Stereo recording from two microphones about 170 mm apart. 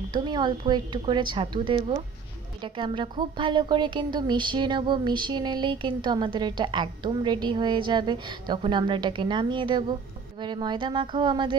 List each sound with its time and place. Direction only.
0.1 s a woman's voice: 25° right (ahead or behind)